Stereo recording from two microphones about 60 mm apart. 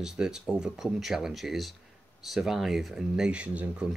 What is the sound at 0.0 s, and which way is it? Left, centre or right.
Speech, centre.